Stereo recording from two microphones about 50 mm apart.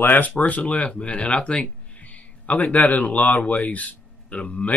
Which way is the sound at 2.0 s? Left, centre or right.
Left.